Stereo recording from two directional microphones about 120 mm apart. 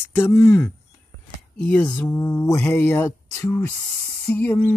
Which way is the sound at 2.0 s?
20° left (ahead or behind).